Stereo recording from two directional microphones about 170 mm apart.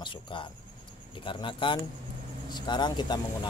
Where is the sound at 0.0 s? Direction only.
30° left (ahead or behind).